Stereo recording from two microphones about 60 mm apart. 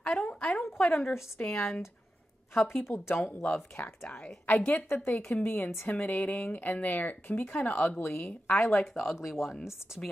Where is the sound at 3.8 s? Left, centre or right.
Left.